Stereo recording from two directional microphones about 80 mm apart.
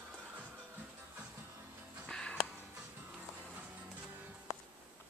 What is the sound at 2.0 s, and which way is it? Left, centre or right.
Music, centre.